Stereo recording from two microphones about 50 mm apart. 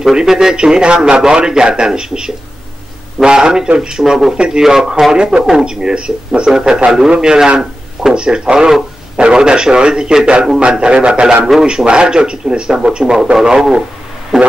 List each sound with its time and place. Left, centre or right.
0.0 s a man's voice: centre